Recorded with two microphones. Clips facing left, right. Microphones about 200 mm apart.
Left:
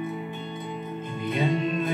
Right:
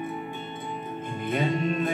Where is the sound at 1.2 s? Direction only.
50° right (ahead or behind).